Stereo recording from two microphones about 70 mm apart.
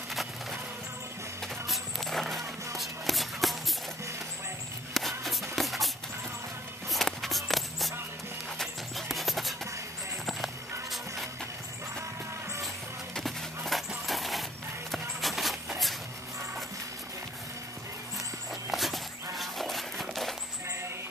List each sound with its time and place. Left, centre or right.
0.1 s music: centre
1.7 s music: centre
2.8 s shuffle: centre
4.9 s shuffle: centre
6.9 s a sound: centre
8.5 s music: centre
12.6 s music: centre
18.5 s walk: centre
19.3 s a sound: centre